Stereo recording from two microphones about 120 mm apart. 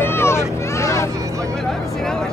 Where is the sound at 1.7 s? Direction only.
5° left (ahead or behind).